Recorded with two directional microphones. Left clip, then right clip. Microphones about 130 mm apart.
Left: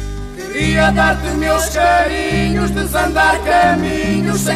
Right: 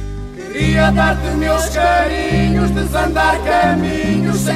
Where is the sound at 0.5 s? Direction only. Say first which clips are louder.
Left 1 dB; 20° right (ahead or behind).